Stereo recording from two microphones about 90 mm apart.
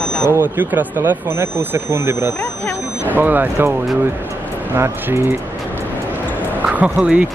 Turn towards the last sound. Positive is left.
turn(degrees=-15)  # may be behind; listen again after turning